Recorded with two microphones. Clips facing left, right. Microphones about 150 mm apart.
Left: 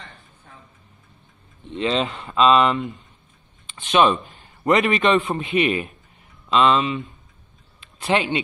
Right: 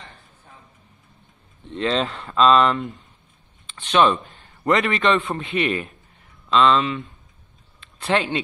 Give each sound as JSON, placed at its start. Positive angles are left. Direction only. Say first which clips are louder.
{"t": 1.7, "sound": "speech", "louder": "even", "side_deg": 5}
{"t": 4.2, "sound": "a man's voice", "louder": "left 2 dB", "side_deg": 20}
{"t": 8.1, "sound": "speech", "louder": "left 1 dB", "side_deg": 10}